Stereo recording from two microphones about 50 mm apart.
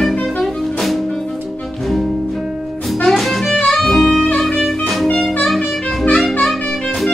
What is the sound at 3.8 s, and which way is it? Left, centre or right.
Saxophone, centre.